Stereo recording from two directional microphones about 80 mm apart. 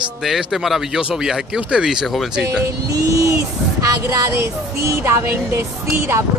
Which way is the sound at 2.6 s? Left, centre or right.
Right.